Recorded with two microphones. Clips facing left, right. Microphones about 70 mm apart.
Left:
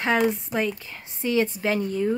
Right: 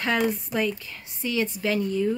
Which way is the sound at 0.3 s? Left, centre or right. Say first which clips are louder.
Even; left.